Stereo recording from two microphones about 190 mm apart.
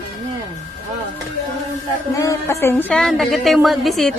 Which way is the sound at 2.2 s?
15° left (ahead or behind).